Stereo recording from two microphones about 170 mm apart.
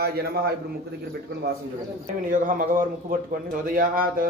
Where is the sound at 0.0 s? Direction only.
65° right (ahead or behind).